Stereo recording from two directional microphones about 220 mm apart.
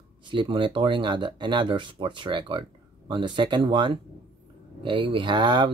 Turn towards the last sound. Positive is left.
turn(degrees=-20)  # may be behind; listen again after turning